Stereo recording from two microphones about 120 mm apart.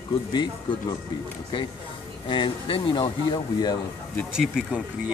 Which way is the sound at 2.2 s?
40° left (ahead or behind).